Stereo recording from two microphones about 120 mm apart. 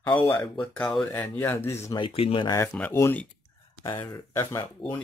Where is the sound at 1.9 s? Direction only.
45° left (ahead or behind).